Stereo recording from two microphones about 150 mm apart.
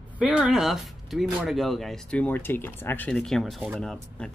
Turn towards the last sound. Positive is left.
turn(degrees=5)  # may be behind; listen again after turning